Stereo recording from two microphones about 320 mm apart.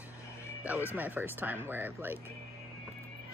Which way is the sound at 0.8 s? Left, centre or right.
Centre.